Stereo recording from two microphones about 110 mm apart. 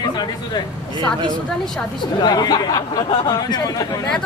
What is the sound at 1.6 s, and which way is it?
Speech, 5° left (ahead or behind).